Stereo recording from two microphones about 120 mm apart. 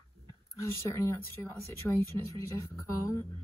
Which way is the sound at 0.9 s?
25° left (ahead or behind).